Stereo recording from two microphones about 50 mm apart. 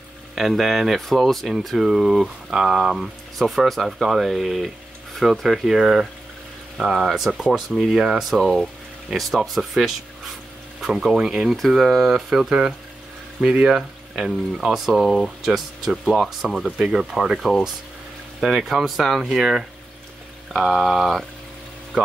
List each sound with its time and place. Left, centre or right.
0.4 s speech: centre
8.4 s speech: centre
11.4 s speech: centre
20.8 s speech: centre